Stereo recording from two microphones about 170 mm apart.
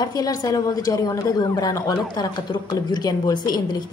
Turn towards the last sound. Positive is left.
turn(degrees=25)  # may be behind; listen again after turning